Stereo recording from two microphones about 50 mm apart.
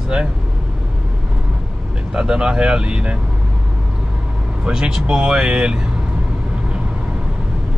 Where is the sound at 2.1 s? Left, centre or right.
Centre.